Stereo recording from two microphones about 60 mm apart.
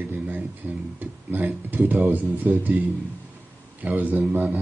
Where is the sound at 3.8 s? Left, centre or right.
Right.